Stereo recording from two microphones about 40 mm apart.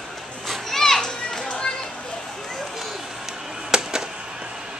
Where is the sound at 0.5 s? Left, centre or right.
Centre.